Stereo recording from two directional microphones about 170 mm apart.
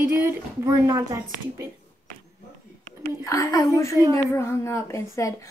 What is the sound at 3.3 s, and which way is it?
A woman's voice, 20° left (ahead or behind).